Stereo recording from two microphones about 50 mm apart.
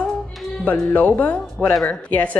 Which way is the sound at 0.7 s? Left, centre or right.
Left.